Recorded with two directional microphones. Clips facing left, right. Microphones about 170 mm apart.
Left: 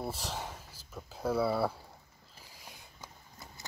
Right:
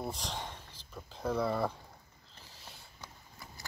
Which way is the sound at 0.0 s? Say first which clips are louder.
Left 1 dB; 5° left (ahead or behind).